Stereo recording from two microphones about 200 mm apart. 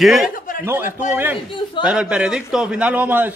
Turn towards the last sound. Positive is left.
turn(degrees=-10)  # may be behind; listen again after turning